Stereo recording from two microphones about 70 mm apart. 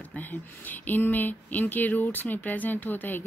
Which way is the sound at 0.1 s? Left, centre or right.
Left.